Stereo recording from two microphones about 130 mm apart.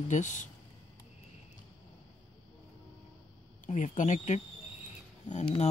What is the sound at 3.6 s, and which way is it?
Speech, 70° left (ahead or behind).